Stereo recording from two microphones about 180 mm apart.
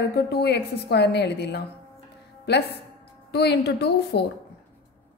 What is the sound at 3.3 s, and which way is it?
A woman's voice, 65° left (ahead or behind).